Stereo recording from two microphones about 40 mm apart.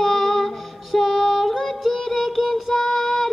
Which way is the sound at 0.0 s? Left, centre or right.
Centre.